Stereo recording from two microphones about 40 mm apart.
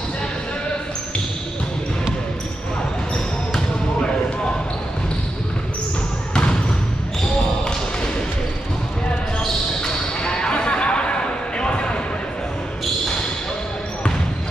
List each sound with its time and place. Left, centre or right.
9.8 s basketball bounce: centre